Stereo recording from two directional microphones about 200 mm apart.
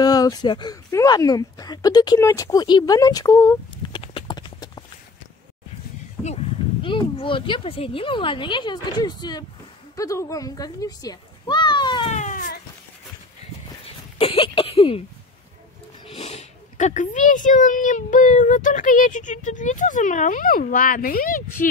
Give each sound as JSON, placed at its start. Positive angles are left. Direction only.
{"t": 0.0, "sound": "speech", "side_deg": 20}
{"t": 4.0, "sound": "clip-clop", "side_deg": 25}
{"t": 6.2, "sound": "speech", "side_deg": 30}
{"t": 12.1, "sound": "a sound", "side_deg": 40}
{"t": 14.1, "sound": "throat clearing", "side_deg": 25}
{"t": 16.1, "sound": "speech", "side_deg": 30}